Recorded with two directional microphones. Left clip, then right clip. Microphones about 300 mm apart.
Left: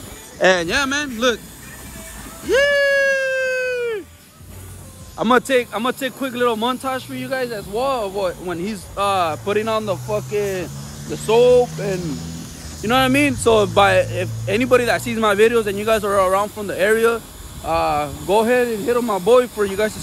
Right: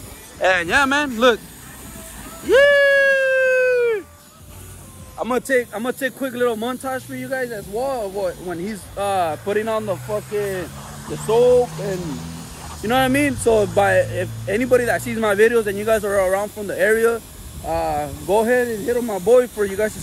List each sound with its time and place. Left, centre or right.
0.7 s speech: centre
2.4 s a sound: centre
5.7 s speech: centre
11.6 s speech: centre
12.8 s speech: centre